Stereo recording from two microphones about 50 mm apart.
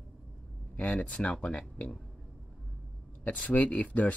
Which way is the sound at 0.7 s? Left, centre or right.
Left.